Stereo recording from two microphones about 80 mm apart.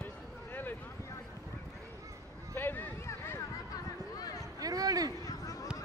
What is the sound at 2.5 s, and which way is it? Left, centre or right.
Speech, left.